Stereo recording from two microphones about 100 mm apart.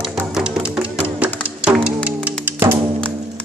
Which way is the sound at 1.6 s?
15° right (ahead or behind).